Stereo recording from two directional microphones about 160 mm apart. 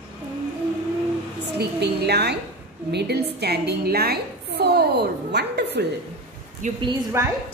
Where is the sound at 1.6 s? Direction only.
90° right.